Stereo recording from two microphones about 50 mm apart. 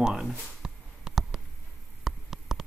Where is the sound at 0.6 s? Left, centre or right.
Centre.